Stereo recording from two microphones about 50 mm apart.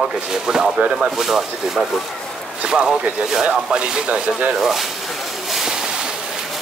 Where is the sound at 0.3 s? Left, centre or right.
Centre.